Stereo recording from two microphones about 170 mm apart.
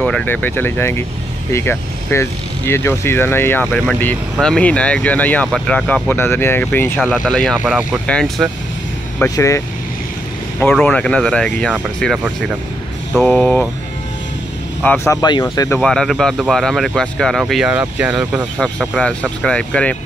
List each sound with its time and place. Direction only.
0.0 s speech: 5° left (ahead or behind)
9.2 s speech: 15° left (ahead or behind)
10.6 s speech: 5° left (ahead or behind)
14.8 s speech: 10° left (ahead or behind)
15.1 s speech: 20° left (ahead or behind)
15.8 s speech: 5° left (ahead or behind)
18.6 s speech: 5° left (ahead or behind)